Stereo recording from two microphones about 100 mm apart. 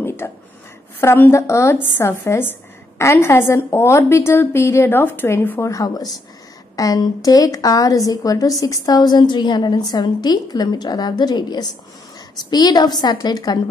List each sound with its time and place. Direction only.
0.0 s a sound: 25° left (ahead or behind)
1.0 s a woman's voice: 25° left (ahead or behind)
5.6 s a woman's voice: 35° left (ahead or behind)